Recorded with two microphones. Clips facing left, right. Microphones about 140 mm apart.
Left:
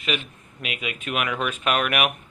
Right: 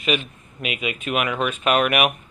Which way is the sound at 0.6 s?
5° right (ahead or behind).